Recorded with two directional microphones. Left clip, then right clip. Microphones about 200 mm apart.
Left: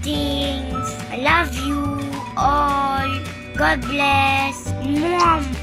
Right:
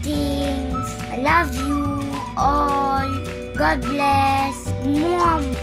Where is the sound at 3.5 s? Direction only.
5° right (ahead or behind).